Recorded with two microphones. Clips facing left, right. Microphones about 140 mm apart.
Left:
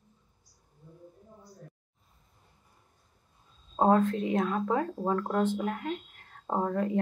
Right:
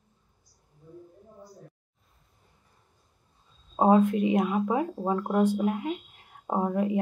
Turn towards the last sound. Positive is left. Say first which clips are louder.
# right 2 dB
turn(degrees=-15)  # may be behind; listen again after turning